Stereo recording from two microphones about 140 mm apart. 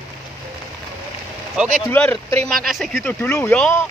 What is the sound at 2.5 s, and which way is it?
Speech, 90° right.